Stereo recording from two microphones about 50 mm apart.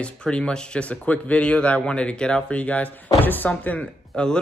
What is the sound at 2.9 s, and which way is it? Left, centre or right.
Speech, left.